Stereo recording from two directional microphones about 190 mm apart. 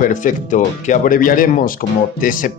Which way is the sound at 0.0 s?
45° left (ahead or behind).